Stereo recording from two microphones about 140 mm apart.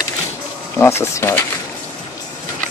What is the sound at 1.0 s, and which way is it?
Speech, 20° left (ahead or behind).